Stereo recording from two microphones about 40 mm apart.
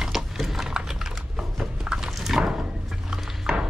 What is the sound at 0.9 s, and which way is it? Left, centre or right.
Typing, centre.